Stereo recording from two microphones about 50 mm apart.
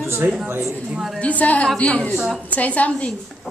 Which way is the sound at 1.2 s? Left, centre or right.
Left.